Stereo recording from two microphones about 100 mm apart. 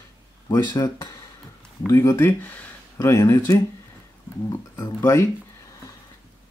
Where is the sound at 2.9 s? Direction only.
35° left (ahead or behind).